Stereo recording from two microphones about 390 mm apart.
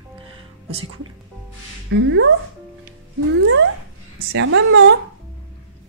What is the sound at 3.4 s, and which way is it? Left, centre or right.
A woman's voice, right.